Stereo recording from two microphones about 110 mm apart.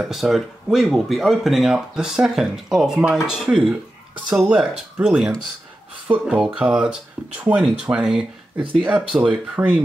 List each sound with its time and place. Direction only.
0.0 s speech: centre (ahead or behind)